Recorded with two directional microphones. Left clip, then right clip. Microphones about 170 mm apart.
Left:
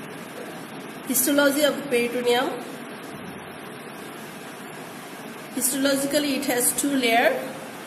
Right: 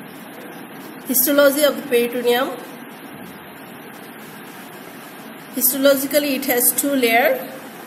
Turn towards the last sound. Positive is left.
turn(degrees=-30)  # may be behind; listen again after turning